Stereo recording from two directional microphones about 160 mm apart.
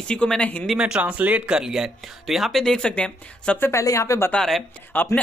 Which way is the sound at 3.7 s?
20° left (ahead or behind).